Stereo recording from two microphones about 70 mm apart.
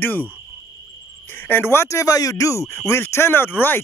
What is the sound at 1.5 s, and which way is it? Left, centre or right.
Speech, left.